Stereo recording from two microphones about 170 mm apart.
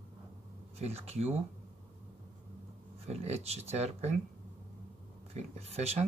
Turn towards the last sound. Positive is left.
turn(degrees=-40)  # may be behind; listen again after turning